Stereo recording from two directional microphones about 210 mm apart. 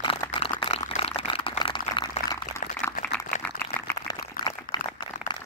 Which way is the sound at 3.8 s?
15° left (ahead or behind).